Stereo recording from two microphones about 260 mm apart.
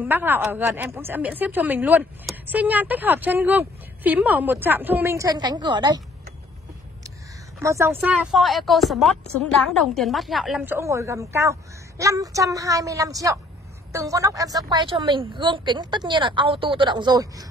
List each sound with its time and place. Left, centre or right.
0.0 s a woman's voice: centre
7.5 s a woman's voice: centre